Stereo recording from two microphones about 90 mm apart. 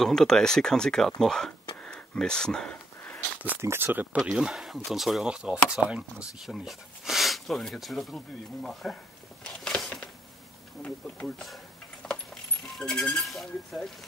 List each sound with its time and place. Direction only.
0.0 s speech: 5° left (ahead or behind)
2.7 s a sound: 20° left (ahead or behind)
3.6 s speech: 25° right (ahead or behind)
4.2 s speech: 5° right (ahead or behind)
9.4 s a sound: 10° left (ahead or behind)
10.8 s speech: 15° left (ahead or behind)
12.0 s coin: 5° left (ahead or behind)
12.7 s speech: 5° left (ahead or behind)